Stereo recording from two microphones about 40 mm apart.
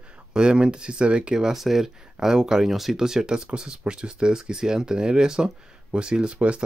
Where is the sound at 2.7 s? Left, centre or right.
Centre.